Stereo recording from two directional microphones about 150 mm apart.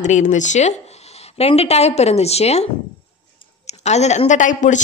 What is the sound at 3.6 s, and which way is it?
A woman's voice, 50° left (ahead or behind).